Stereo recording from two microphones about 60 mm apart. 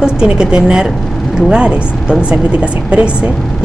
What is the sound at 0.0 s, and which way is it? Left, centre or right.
A woman's voice, centre.